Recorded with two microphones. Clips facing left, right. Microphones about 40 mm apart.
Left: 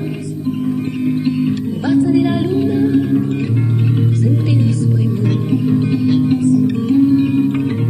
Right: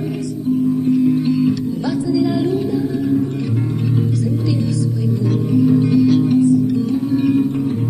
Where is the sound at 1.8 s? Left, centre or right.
Left.